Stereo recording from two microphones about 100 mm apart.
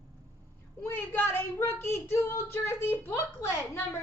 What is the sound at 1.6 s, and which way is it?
A woman's voice, 25° left (ahead or behind).